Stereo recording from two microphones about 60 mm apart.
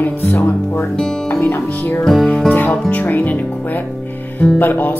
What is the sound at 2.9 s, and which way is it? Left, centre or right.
Speech, left.